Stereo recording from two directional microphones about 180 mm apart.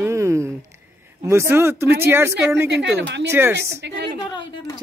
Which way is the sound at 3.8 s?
65° right (ahead or behind).